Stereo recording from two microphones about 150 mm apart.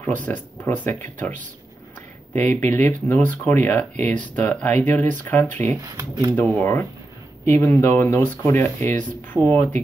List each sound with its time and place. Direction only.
0.0 s speech: 10° left (ahead or behind)
2.3 s speech: 10° left (ahead or behind)
5.8 s speech: 25° right (ahead or behind)
6.4 s speech: 10° left (ahead or behind)